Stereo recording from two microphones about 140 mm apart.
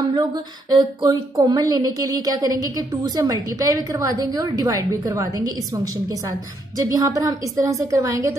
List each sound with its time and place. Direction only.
0.1 s a woman's voice: 30° right (ahead or behind)
6.8 s a woman's voice: 25° right (ahead or behind)